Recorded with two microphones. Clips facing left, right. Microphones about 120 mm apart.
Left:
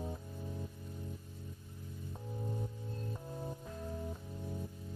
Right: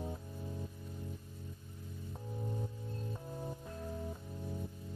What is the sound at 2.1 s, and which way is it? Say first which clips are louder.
Music: even; centre (ahead or behind).